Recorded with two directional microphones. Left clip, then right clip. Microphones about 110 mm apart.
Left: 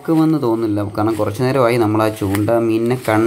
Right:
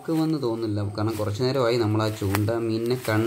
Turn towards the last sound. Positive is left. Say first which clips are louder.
# left 9 dB
turn(degrees=25)  # may be behind; listen again after turning